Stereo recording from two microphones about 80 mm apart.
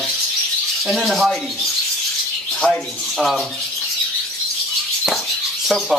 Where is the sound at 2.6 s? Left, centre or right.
Centre.